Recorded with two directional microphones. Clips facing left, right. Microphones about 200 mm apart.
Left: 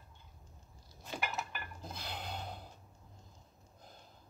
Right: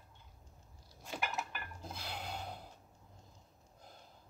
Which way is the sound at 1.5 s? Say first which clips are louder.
Left 1 dB; 5° right (ahead or behind).